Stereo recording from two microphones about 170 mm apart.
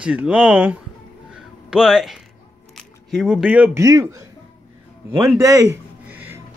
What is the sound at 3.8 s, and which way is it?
Speech, 20° right (ahead or behind).